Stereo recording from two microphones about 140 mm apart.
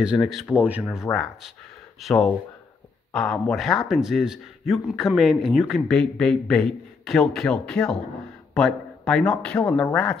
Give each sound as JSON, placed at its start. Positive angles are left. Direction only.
{"t": 0.0, "sound": "a man's voice", "side_deg": -5}
{"t": 0.6, "sound": "speech", "side_deg": -10}
{"t": 1.1, "sound": "speech", "side_deg": 20}
{"t": 2.0, "sound": "a man's voice", "side_deg": 0}